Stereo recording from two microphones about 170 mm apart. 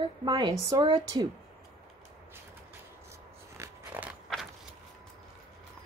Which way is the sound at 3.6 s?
10° right (ahead or behind).